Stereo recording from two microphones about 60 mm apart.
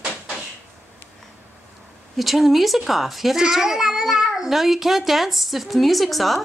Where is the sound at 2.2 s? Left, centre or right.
Centre.